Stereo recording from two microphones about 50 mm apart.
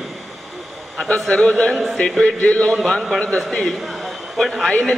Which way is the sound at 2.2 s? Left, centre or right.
Left.